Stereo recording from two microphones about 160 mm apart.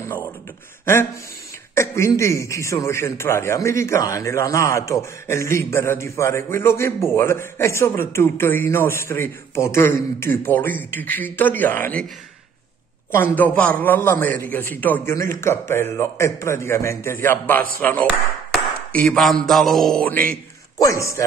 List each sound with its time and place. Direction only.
1.8 s a man's voice: 15° left (ahead or behind)
13.1 s a man's voice: 10° left (ahead or behind)
18.5 s a sound: 10° left (ahead or behind)
19.4 s mantra: centre (ahead or behind)
20.8 s a man's voice: 20° left (ahead or behind)